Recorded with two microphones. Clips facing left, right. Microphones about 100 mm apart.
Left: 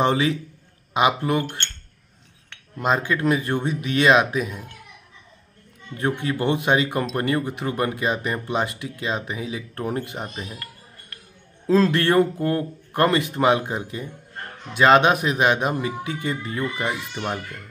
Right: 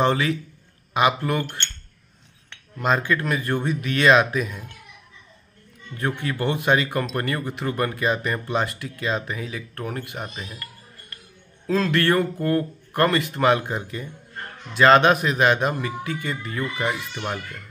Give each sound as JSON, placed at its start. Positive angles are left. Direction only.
{"t": 0.0, "sound": "speech", "side_deg": 20}
{"t": 2.8, "sound": "speech", "side_deg": 15}
{"t": 5.9, "sound": "speech", "side_deg": 20}
{"t": 11.6, "sound": "a man's voice", "side_deg": 30}